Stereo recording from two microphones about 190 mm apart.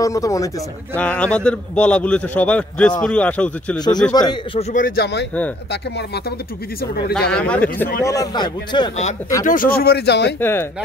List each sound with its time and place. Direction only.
0.0 s a man's voice: 15° left (ahead or behind)
0.9 s a man's voice: 5° left (ahead or behind)
4.1 s speech: 20° left (ahead or behind)
4.6 s speech: 45° left (ahead or behind); by 6.3 s 60° left (ahead or behind)
7.2 s speech: 5° left (ahead or behind)
8.0 s speech: 15° left (ahead or behind)
9.4 s speech: 45° left (ahead or behind); by 10.3 s 60° left (ahead or behind)
10.4 s a man's voice: 10° left (ahead or behind)